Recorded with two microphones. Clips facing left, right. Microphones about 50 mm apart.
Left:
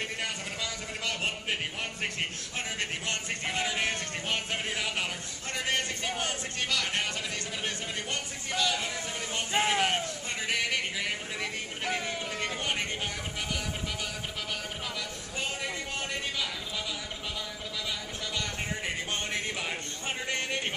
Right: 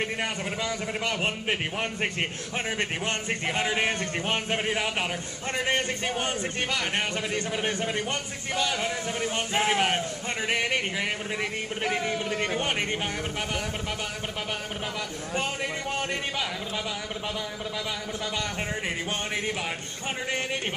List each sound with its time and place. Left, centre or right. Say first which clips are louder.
0.0 s speech: right 5 dB; right
9.5 s speech: right 1 dB; centre
9.8 s speech: right 3 dB; right
12.5 s speech: right 5 dB; right
16.0 s a man's voice: right 3 dB; right
20.2 s speech: right 2 dB; centre